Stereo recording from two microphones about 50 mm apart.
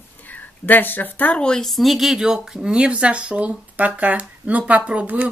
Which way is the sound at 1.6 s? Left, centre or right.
Centre.